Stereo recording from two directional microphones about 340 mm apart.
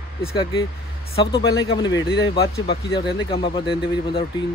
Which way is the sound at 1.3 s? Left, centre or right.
Left.